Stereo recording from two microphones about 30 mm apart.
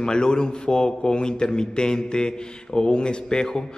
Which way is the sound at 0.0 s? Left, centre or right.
Left.